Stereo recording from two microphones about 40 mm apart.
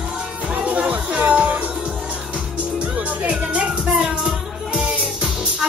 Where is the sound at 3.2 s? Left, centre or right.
Right.